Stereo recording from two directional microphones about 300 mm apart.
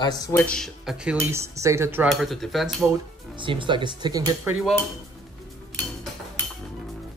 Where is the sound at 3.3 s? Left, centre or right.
Centre.